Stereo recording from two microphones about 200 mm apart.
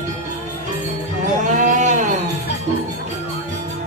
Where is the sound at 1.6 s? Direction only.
40° right (ahead or behind).